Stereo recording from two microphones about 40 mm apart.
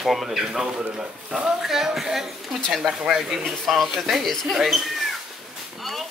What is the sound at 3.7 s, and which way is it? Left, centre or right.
Speech, centre.